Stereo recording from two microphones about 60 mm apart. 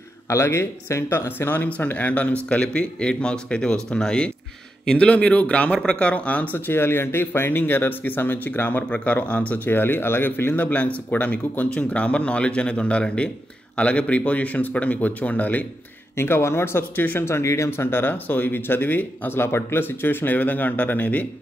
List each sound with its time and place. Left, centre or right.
0.3 s speech: left
1.6 s speech: left
6.6 s speech: left
9.7 s speech: left
16.2 s speech: left